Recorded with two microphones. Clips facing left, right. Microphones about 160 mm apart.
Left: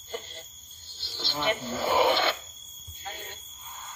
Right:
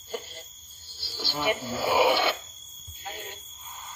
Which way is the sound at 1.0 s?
10° right (ahead or behind).